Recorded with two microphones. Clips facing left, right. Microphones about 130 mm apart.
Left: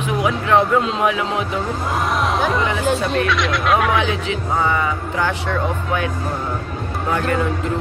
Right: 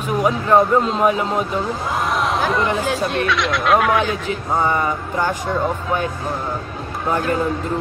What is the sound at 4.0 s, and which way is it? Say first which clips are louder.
Speech: even; 45° right (ahead or behind).